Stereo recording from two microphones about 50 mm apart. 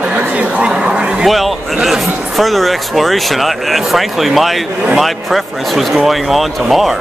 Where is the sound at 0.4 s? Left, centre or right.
Right.